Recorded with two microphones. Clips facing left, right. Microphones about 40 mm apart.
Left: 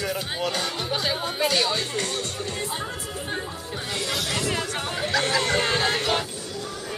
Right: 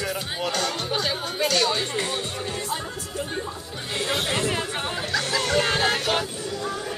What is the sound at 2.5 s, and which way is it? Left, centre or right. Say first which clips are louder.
Music: even; centre.